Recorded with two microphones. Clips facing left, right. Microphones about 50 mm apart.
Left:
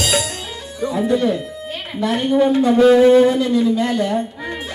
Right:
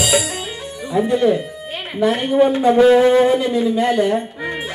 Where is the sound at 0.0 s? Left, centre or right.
Centre.